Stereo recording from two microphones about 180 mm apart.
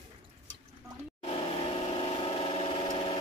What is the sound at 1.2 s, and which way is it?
Vehicle, 30° left (ahead or behind).